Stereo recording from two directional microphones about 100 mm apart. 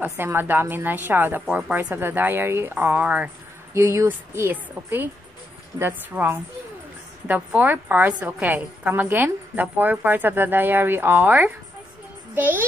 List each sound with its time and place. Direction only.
0.0 s a woman's voice: 20° right (ahead or behind)
3.7 s a woman's voice: 30° right (ahead or behind)